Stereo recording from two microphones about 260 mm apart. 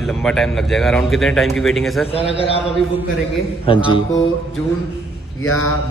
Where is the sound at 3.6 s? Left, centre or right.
Centre.